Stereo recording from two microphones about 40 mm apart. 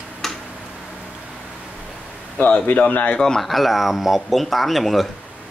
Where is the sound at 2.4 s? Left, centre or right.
Left.